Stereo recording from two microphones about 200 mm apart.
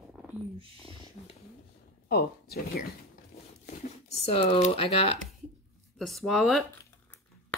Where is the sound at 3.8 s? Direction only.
30° left (ahead or behind).